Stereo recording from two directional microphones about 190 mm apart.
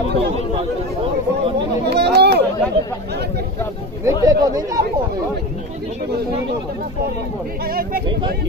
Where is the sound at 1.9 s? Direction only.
60° right (ahead or behind).